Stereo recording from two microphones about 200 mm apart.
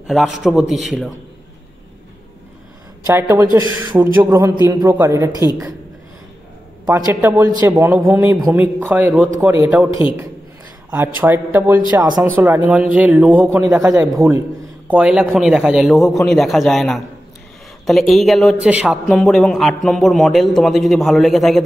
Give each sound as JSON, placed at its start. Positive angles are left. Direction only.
{"t": 0.0, "sound": "a man's voice", "side_deg": 0}
{"t": 3.1, "sound": "a man's voice", "side_deg": -10}
{"t": 6.9, "sound": "a man's voice", "side_deg": -10}
{"t": 10.9, "sound": "a man's voice", "side_deg": -10}